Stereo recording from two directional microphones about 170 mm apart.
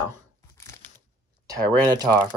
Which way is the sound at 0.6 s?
15° left (ahead or behind).